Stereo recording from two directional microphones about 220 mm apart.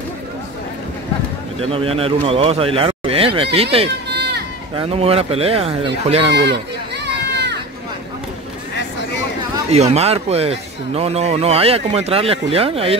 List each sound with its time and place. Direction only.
1.6 s a man's voice: 25° right (ahead or behind)
4.1 s run: 50° right (ahead or behind)
4.7 s a man's voice: 25° right (ahead or behind)
6.3 s speech: 50° right (ahead or behind)
9.7 s a man's voice: 30° right (ahead or behind)